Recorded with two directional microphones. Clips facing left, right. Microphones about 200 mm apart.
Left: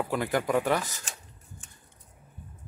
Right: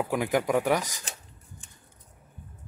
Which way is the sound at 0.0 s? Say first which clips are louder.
Right 2 dB; 15° right (ahead or behind).